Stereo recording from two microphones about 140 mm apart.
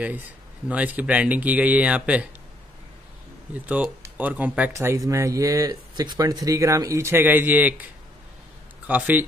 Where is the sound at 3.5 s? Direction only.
10° right (ahead or behind).